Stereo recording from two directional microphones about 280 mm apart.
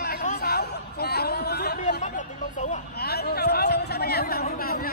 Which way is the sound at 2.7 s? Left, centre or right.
Left.